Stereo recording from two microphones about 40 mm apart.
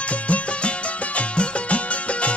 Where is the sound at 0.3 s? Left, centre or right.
Left.